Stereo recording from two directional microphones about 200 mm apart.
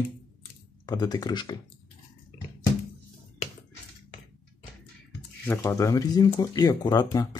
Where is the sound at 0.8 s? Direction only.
20° left (ahead or behind).